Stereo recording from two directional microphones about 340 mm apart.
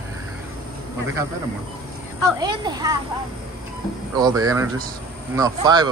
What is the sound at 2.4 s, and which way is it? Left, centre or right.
Speech, centre.